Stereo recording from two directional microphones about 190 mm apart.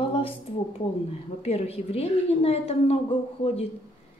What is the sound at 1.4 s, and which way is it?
A woman's voice, 30° left (ahead or behind).